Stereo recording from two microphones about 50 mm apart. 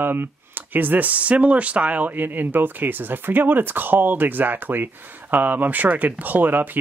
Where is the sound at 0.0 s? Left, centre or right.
Right.